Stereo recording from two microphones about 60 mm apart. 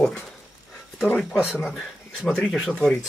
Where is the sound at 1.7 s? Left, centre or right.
Centre.